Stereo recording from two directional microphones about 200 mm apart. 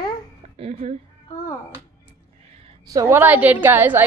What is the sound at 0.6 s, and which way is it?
Speech, 30° right (ahead or behind).